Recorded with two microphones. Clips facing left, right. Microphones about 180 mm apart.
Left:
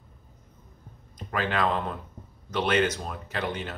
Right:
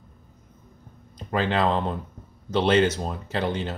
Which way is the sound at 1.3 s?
30° right (ahead or behind).